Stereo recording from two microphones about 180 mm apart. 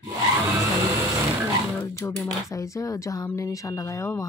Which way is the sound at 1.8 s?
15° left (ahead or behind).